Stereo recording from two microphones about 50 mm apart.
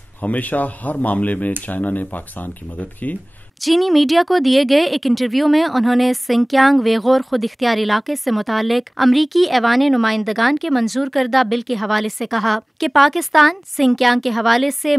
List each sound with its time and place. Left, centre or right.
0.2 s speech: left
3.6 s speech: centre